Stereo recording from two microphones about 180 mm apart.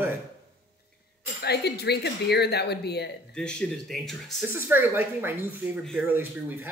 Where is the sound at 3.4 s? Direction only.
5° left (ahead or behind).